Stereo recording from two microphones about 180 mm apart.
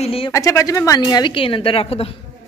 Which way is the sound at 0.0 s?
30° left (ahead or behind).